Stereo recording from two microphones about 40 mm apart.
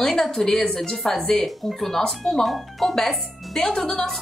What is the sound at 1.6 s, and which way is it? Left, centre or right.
Speech, centre.